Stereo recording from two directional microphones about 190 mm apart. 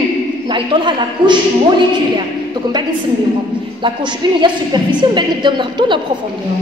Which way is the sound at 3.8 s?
25° right (ahead or behind).